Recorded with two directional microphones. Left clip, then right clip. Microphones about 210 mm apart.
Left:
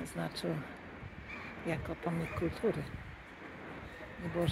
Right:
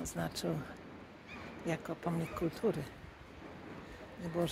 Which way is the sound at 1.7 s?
5° right (ahead or behind).